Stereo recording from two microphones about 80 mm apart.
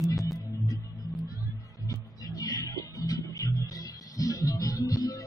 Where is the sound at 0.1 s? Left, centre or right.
Left.